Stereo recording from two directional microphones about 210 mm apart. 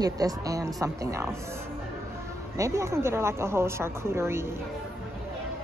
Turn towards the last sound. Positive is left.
turn(degrees=-10)  # may be behind; listen again after turning